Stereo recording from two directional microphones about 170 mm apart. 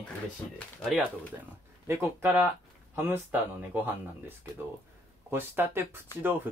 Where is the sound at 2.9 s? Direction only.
15° right (ahead or behind).